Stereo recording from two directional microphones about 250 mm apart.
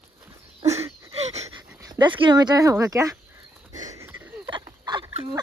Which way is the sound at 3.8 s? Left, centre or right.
Centre.